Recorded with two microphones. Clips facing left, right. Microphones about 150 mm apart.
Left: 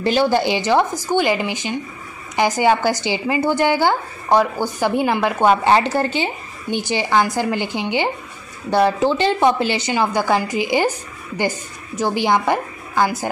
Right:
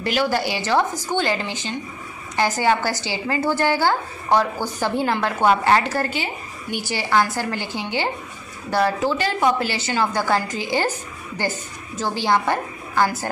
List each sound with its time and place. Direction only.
0.0 s a woman's voice: 25° left (ahead or behind)